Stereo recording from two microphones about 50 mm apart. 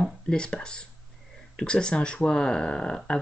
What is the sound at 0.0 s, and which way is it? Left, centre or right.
Speech, centre.